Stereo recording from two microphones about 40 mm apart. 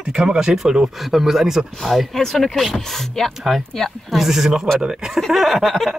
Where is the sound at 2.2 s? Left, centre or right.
Centre.